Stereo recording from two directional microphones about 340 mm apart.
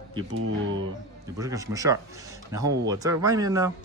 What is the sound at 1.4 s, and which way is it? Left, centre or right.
Speech, centre.